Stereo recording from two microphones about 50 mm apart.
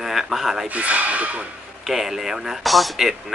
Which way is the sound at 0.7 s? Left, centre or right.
Right.